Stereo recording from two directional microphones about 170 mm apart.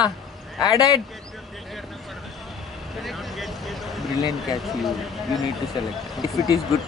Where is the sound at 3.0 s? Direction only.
Centre (ahead or behind).